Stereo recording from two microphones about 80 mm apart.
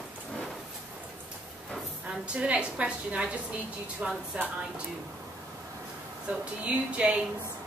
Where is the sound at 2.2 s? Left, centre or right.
Centre.